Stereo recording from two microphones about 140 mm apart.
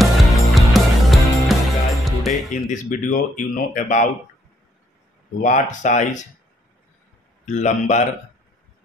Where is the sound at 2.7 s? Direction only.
70° left (ahead or behind).